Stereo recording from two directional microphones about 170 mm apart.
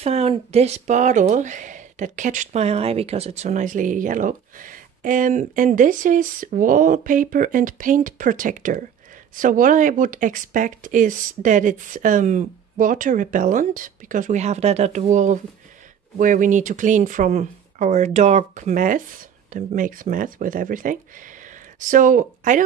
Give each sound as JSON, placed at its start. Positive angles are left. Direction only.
{"t": 0.0, "sound": "speech", "side_deg": -35}